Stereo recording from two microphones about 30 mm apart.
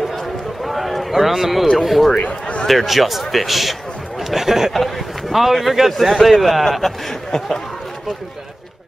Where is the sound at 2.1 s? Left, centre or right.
Left.